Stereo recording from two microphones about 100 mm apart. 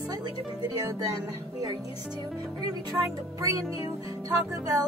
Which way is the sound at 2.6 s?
40° right (ahead or behind).